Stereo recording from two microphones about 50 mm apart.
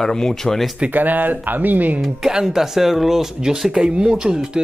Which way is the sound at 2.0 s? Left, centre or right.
Centre.